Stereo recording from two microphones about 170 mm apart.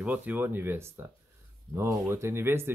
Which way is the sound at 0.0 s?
10° right (ahead or behind).